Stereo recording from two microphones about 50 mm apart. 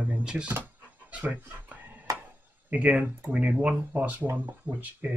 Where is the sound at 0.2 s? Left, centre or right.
Centre.